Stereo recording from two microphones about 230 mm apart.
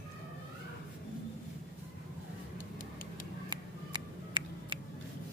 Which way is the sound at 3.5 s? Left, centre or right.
Centre.